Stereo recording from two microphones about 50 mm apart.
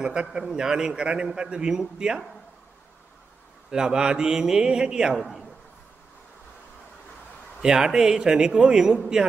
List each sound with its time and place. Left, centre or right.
0.0 s a man's voice: centre
3.7 s a man's voice: centre
7.6 s a man's voice: centre